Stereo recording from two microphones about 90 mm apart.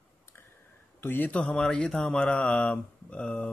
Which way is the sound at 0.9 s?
25° left (ahead or behind).